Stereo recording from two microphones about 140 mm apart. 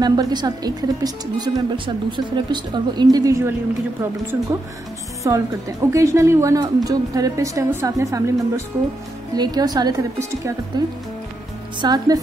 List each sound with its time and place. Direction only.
0.0 s a woman's voice: 30° right (ahead or behind)